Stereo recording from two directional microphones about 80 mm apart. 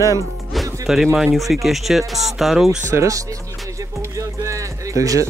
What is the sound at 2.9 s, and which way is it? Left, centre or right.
Speech, right.